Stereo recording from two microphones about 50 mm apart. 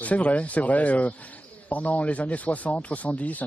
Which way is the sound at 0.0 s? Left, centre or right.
Left.